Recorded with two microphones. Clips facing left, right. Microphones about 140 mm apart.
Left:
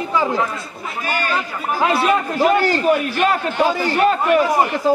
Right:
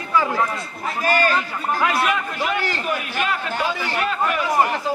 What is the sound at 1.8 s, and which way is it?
A man's voice, 30° left (ahead or behind).